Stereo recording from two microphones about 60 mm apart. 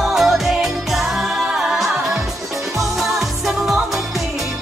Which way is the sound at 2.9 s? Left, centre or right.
Centre.